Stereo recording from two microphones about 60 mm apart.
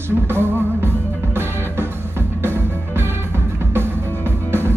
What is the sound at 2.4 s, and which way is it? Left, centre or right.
Music, right.